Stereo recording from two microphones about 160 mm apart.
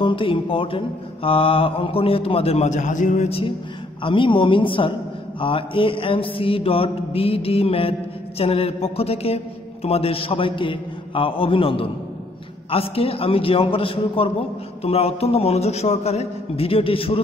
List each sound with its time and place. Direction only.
0.0 s mantra: 35° left (ahead or behind)